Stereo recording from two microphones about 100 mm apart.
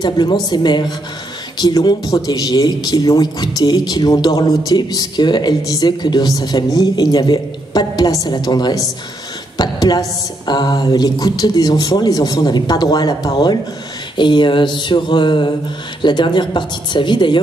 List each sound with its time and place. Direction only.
0.0 s speech: 45° left (ahead or behind)